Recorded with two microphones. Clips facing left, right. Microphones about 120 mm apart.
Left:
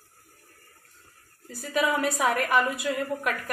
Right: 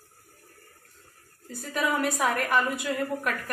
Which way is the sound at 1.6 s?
Centre (ahead or behind).